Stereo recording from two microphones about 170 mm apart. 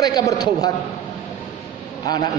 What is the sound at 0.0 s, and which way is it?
Speech, 25° left (ahead or behind).